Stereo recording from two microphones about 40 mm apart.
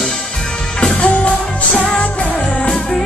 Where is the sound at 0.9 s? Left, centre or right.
Left.